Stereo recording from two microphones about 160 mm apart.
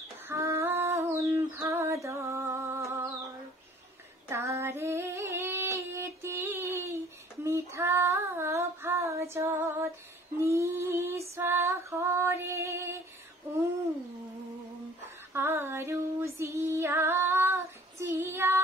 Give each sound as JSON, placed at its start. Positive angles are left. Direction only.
{"t": 0.3, "sound": "female singing", "side_deg": -15}
{"t": 4.3, "sound": "female singing", "side_deg": -15}
{"t": 15.3, "sound": "female singing", "side_deg": -15}